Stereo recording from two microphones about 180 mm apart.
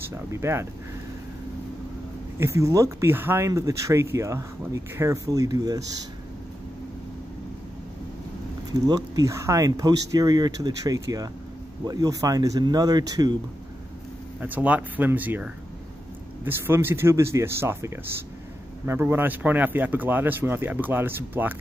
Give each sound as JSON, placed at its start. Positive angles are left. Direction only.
{"t": 0.3, "sound": "speech", "side_deg": -15}
{"t": 2.3, "sound": "speech", "side_deg": -15}
{"t": 8.7, "sound": "speech", "side_deg": -20}
{"t": 14.4, "sound": "speech", "side_deg": -10}